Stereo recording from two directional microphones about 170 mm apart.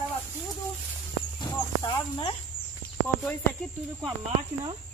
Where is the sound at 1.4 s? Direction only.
25° left (ahead or behind).